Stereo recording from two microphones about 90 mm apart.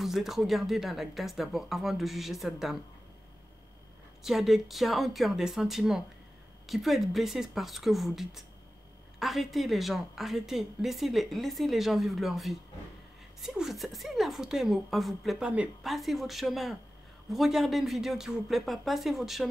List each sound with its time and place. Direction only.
0.0 s a woman's voice: centre (ahead or behind)
4.2 s a woman's voice: centre (ahead or behind)
15.8 s a woman's voice: centre (ahead or behind)